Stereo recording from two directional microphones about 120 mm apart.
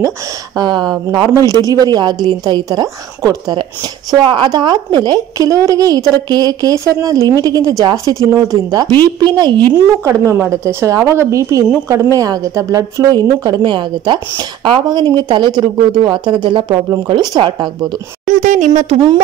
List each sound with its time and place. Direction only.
0.6 s a woman's voice: 35° right (ahead or behind)
4.2 s a woman's voice: 40° right (ahead or behind)
10.0 s a woman's voice: 20° right (ahead or behind); by 17.9 s 40° right (ahead or behind)
18.3 s speech: 90° right